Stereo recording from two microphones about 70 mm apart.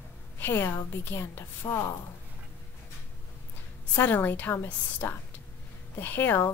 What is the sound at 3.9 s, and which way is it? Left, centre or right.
A woman's voice, left.